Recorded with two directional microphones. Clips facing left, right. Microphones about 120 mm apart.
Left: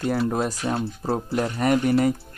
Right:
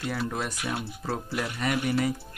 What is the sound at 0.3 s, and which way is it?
Speech, 35° left (ahead or behind).